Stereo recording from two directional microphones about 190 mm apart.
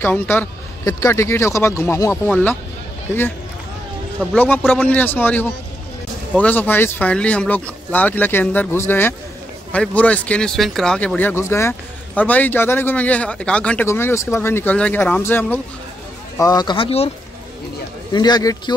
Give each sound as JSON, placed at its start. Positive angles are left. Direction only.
{"t": 0.0, "sound": "speech", "side_deg": 10}
{"t": 4.4, "sound": "speech", "side_deg": 10}
{"t": 16.3, "sound": "speech", "side_deg": 20}
{"t": 18.1, "sound": "speech", "side_deg": 20}